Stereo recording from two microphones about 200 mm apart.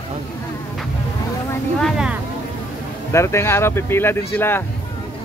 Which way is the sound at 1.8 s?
Centre (ahead or behind).